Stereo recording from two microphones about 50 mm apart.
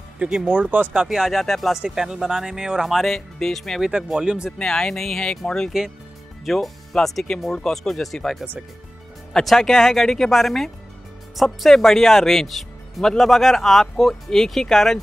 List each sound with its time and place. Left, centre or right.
0.5 s speech: right
1.0 s speech: centre
1.7 s speech: centre
2.9 s speech: centre
3.8 s speech: centre
4.6 s speech: centre